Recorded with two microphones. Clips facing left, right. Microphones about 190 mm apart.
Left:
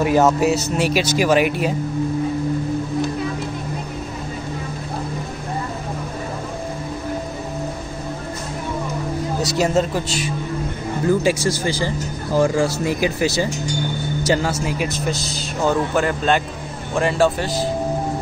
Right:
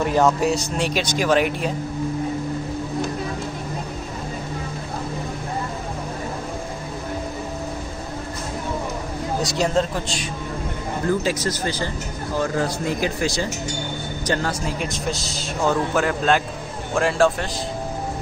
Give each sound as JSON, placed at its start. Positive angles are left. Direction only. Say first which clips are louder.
{"t": 0.0, "sound": "a man's voice", "louder": "left 3 dB", "side_deg": 5}
{"t": 9.4, "sound": "a man's voice", "louder": "left 2 dB", "side_deg": 5}